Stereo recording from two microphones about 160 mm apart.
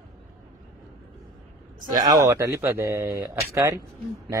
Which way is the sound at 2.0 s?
20° right (ahead or behind).